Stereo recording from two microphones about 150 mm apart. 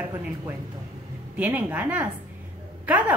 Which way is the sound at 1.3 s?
10° right (ahead or behind).